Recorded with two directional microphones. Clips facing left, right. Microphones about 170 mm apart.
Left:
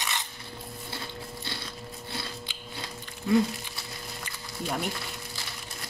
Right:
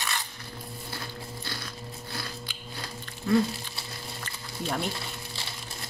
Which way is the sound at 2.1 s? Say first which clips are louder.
Left 1 dB; 25° left (ahead or behind).